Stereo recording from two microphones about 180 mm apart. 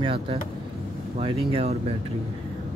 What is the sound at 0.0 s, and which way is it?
Speech, 30° right (ahead or behind).